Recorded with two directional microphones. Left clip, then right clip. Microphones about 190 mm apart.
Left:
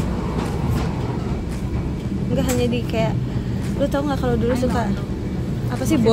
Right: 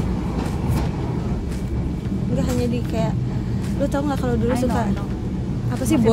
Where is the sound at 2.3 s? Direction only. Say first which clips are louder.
Left 3 dB; 10° left (ahead or behind).